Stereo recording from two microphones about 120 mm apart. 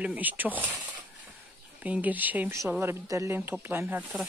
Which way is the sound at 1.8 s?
10° right (ahead or behind).